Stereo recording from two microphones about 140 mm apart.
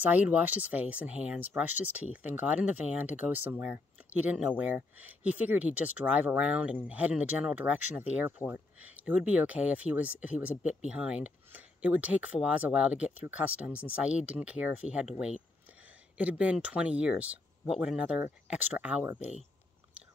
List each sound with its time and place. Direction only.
0.0 s speech: 10° right (ahead or behind)
19.1 s speech: 55° left (ahead or behind)